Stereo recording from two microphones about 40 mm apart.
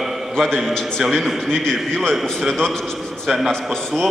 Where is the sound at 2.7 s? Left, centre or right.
Centre.